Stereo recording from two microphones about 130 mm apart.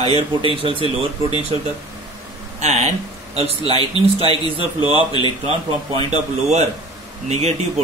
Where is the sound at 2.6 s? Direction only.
60° right (ahead or behind).